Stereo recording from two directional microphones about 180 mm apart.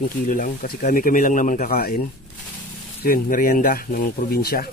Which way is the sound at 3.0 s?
50° left (ahead or behind).